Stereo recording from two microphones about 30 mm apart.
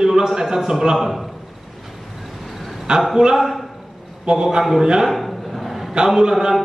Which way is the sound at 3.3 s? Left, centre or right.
Centre.